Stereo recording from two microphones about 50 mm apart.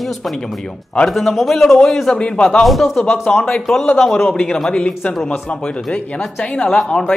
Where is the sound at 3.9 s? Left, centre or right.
Centre.